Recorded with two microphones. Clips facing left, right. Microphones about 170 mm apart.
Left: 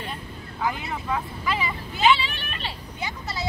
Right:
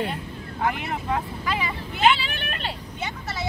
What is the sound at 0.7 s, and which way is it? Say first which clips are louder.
Speech: right 2 dB; 60° right (ahead or behind).